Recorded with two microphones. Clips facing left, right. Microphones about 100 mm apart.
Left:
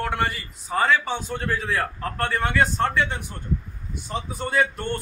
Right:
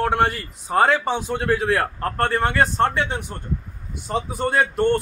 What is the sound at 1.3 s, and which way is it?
A man's voice, 85° right.